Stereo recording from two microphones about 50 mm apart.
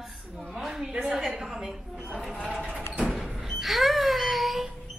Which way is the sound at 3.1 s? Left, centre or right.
Centre.